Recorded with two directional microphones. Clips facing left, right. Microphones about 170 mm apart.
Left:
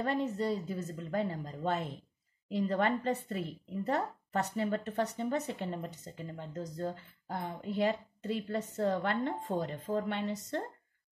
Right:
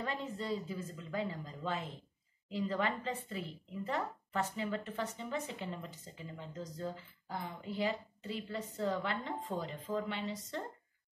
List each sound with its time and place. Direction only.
0.0 s a woman's voice: 45° left (ahead or behind)